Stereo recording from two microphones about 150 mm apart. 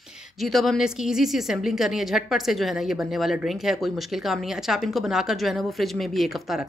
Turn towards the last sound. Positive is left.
turn(degrees=0)  # may be behind; listen again after turning